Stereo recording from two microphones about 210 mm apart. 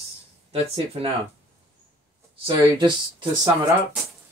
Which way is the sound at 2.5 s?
25° right (ahead or behind).